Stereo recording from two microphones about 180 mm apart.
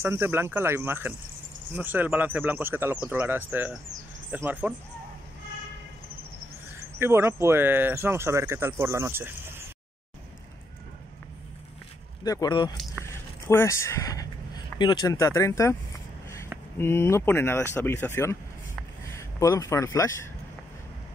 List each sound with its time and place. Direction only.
0.0 s speech: 15° right (ahead or behind)
7.0 s speech: 15° right (ahead or behind)
12.2 s speech: 20° left (ahead or behind)
13.5 s speech: 15° left (ahead or behind)
16.7 s speech: 15° left (ahead or behind)